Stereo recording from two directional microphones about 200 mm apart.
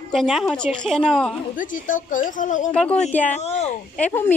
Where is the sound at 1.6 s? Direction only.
40° left (ahead or behind).